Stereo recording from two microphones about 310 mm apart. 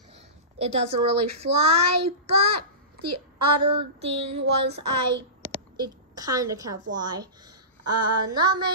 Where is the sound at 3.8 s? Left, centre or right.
Centre.